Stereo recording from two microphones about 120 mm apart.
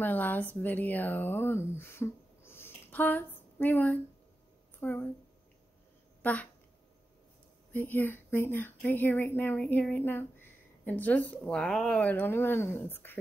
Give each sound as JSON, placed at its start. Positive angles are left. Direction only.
{"t": 0.0, "sound": "speech", "side_deg": 15}
{"t": 6.2, "sound": "speech", "side_deg": 15}
{"t": 7.7, "sound": "speech", "side_deg": 15}
{"t": 12.0, "sound": "speech", "side_deg": 15}